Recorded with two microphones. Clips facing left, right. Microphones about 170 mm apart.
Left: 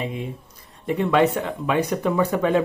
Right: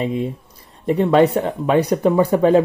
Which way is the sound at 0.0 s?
35° right (ahead or behind).